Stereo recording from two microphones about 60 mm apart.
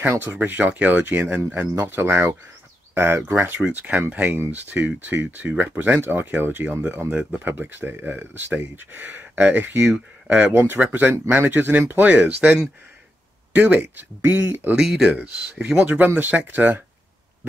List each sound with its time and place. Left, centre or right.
0.0 s speech: right
1.8 s speech: right
3.6 s speech: centre
4.3 s speech: right; by 10.5 s centre
10.5 s speech: right
10.8 s speech: right
13.6 s speech: right
14.8 s speech: centre
15.5 s speech: centre
16.2 s speech: right